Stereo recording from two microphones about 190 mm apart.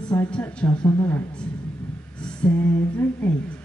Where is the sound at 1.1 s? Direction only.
15° left (ahead or behind).